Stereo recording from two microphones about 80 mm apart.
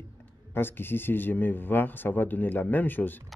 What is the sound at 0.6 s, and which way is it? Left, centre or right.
Speech, left.